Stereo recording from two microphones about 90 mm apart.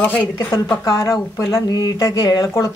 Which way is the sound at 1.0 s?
35° left (ahead or behind).